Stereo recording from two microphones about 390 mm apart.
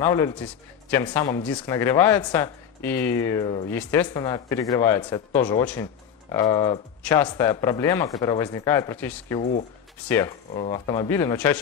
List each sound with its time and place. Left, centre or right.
0.0 s speech: centre
9.4 s speech: centre
10.0 s speech: centre